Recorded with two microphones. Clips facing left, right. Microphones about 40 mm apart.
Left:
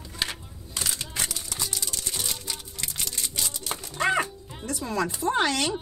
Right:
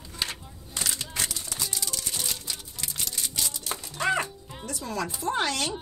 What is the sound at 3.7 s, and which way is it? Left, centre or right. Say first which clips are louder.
Music: left 2 dB; left.